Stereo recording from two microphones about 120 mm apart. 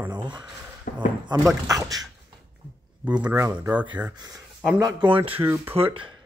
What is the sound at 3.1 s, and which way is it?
Speech, 10° right (ahead or behind).